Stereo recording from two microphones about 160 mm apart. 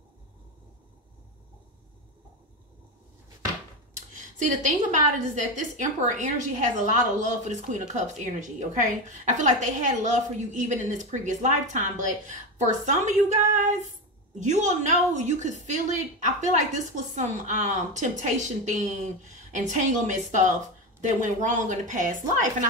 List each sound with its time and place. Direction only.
3.9 s a woman's voice: 50° right (ahead or behind)